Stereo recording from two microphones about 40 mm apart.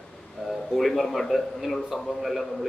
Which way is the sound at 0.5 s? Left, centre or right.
Centre.